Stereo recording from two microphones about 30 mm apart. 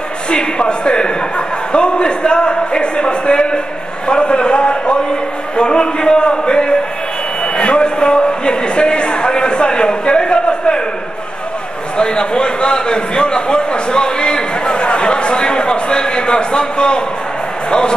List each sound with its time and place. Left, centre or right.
0.3 s a man's voice: left
12.0 s a man's voice: left